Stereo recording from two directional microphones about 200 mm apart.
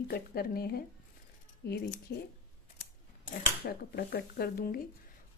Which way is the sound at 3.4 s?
50° left (ahead or behind).